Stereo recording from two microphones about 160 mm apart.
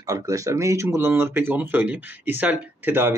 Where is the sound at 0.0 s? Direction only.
20° right (ahead or behind).